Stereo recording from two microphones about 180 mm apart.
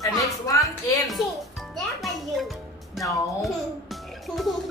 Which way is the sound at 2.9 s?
Centre (ahead or behind).